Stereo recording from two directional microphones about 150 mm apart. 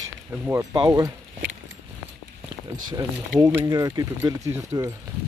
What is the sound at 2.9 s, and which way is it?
Speech, 25° right (ahead or behind).